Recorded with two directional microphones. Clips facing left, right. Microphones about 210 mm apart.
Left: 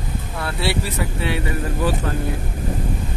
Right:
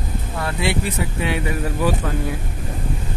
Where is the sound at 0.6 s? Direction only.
15° right (ahead or behind).